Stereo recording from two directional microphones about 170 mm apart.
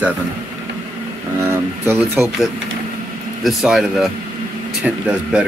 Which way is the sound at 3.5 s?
Centre (ahead or behind).